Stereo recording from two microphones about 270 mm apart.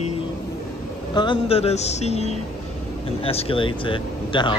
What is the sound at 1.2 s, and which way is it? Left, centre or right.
Speech, centre.